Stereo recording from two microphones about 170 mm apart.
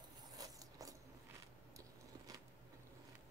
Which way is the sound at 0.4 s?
20° right (ahead or behind).